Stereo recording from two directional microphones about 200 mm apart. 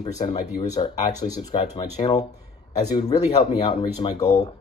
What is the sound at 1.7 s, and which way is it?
Speech, 20° left (ahead or behind).